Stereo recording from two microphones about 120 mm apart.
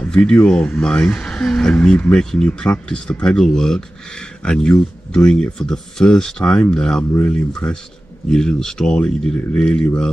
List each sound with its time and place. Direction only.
0.0 s speech: 10° left (ahead or behind)